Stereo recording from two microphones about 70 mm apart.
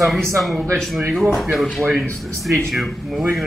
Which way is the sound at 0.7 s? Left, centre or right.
Centre.